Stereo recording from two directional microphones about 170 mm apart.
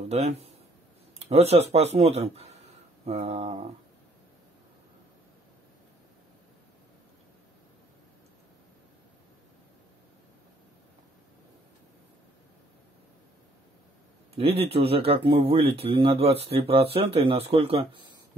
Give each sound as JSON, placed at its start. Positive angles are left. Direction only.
{"t": 0.1, "sound": "a man's voice", "side_deg": -40}
{"t": 14.3, "sound": "speech", "side_deg": -35}